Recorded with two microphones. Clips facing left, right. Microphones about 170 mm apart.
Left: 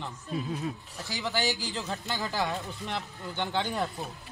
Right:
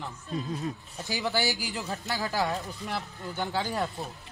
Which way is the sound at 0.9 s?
15° right (ahead or behind).